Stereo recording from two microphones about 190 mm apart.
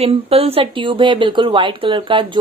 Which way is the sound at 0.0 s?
30° right (ahead or behind).